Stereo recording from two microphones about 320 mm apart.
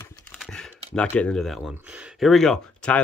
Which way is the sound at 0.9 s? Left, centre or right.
Centre.